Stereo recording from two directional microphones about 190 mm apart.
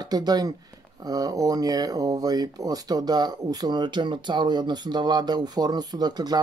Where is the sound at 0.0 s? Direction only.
20° right (ahead or behind).